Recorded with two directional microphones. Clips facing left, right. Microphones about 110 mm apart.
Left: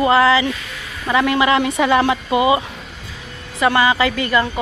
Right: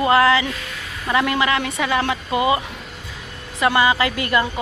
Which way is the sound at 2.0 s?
10° left (ahead or behind).